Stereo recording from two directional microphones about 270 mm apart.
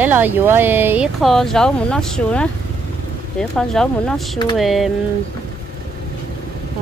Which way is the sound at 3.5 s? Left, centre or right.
Centre.